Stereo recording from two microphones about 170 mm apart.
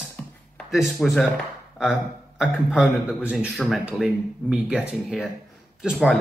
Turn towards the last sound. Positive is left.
turn(degrees=0)  # may be behind; listen again after turning